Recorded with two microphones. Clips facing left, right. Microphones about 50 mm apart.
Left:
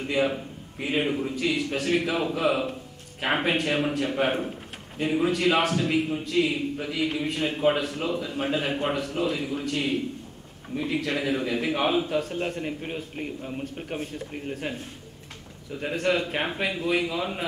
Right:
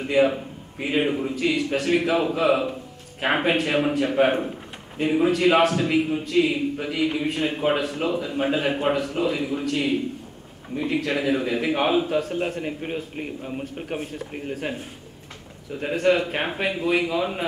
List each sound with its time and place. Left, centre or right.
0.0 s a man's voice: centre